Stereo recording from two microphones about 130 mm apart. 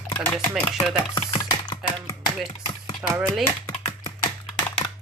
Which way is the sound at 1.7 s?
30° left (ahead or behind).